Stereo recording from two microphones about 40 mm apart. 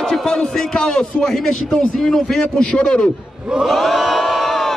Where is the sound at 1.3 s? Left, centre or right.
Centre.